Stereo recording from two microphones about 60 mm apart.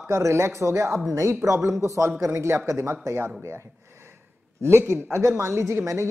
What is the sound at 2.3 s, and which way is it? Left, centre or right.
Speech, right.